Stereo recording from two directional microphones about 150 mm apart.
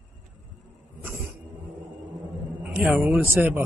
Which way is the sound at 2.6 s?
5° right (ahead or behind).